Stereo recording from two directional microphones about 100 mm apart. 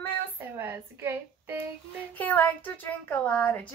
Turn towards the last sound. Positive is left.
turn(degrees=15)  # may be behind; listen again after turning